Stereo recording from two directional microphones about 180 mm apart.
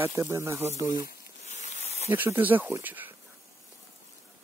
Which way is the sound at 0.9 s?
45° left (ahead or behind).